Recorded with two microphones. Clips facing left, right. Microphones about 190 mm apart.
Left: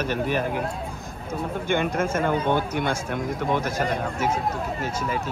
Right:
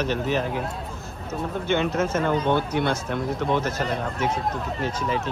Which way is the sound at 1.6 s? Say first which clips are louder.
Right 1 dB; 10° left (ahead or behind).